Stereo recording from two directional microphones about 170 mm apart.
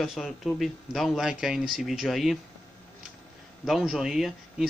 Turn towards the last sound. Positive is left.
turn(degrees=0)  # may be behind; listen again after turning